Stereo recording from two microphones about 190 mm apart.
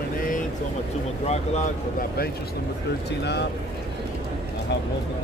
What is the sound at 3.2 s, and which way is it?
Speech, 65° left (ahead or behind).